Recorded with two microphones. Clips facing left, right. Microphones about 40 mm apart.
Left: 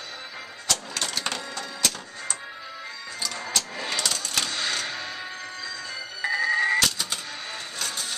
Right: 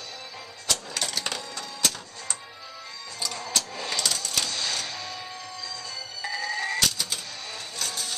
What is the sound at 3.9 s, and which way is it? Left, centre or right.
Cash register, centre.